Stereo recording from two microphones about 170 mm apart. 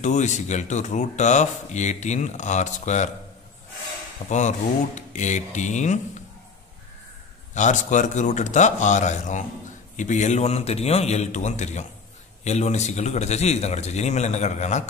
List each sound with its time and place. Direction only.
0.0 s speech: 45° left (ahead or behind)
4.3 s speech: 45° left (ahead or behind)
7.5 s a man's voice: 45° left (ahead or behind)